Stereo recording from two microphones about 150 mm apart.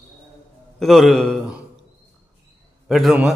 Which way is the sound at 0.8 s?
Centre (ahead or behind).